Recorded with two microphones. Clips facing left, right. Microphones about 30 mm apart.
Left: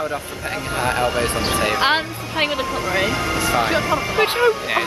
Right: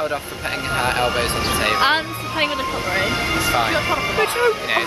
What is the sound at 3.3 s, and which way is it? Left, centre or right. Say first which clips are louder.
Speech: even; centre.